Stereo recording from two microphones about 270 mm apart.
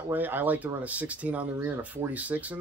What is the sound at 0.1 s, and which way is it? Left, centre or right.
Speech, centre.